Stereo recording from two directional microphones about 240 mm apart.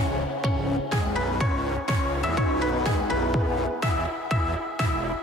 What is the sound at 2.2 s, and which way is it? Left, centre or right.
Music, centre.